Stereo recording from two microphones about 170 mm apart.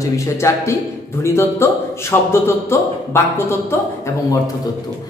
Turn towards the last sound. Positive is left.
turn(degrees=20)  # may be behind; listen again after turning